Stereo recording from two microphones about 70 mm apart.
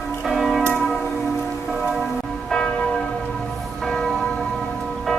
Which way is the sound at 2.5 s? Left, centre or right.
Centre.